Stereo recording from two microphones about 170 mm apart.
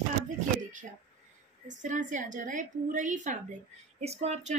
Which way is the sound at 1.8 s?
45° right (ahead or behind).